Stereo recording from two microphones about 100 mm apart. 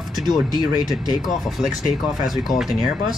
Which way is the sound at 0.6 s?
40° left (ahead or behind).